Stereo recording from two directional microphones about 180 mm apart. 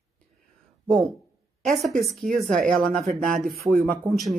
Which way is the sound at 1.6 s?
Centre (ahead or behind).